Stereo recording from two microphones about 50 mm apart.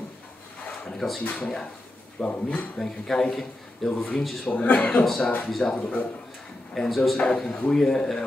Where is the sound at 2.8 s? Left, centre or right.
Centre.